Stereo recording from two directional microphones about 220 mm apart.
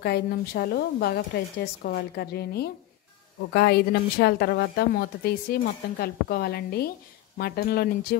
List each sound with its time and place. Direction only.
0.0 s a woman's voice: 45° left (ahead or behind)